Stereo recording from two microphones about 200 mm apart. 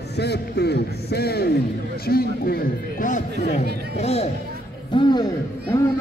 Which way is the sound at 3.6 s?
55° right (ahead or behind).